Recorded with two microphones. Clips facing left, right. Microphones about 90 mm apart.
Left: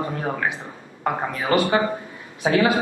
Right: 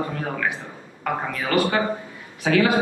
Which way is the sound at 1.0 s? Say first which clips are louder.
Left 2 dB; 20° left (ahead or behind).